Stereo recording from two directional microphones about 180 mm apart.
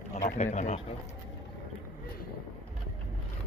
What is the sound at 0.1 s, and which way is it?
Speech, 40° left (ahead or behind).